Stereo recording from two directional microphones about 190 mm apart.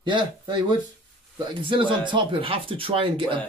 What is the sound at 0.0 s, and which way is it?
Speech, 25° right (ahead or behind).